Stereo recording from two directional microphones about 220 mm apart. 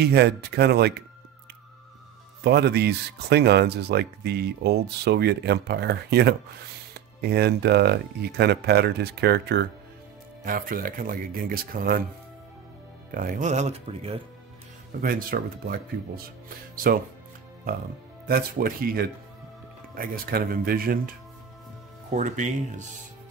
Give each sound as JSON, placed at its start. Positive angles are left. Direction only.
{"t": 0.0, "sound": "speech", "side_deg": -50}
{"t": 2.4, "sound": "speech", "side_deg": -50}
{"t": 13.1, "sound": "speech", "side_deg": -35}
{"t": 15.0, "sound": "speech", "side_deg": -40}
{"t": 18.2, "sound": "speech", "side_deg": -45}
{"t": 22.1, "sound": "speech", "side_deg": -35}